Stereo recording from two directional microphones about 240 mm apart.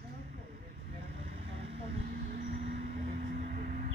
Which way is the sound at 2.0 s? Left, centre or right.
Right.